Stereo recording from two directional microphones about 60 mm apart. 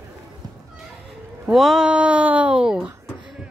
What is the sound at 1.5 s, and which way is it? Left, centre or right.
Speech, centre.